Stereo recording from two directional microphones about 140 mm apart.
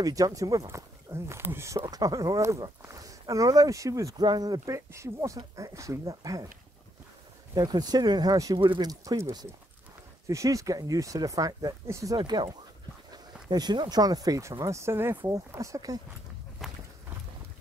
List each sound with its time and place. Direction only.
0.0 s speech: 25° right (ahead or behind)
7.5 s speech: 30° right (ahead or behind)
16.6 s walk: centre (ahead or behind)